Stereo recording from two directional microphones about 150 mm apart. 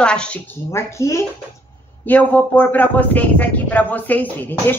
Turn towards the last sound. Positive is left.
turn(degrees=15)  # may be behind; listen again after turning